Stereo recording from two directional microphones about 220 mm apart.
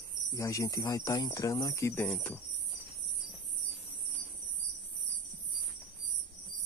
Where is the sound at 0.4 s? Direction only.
15° left (ahead or behind).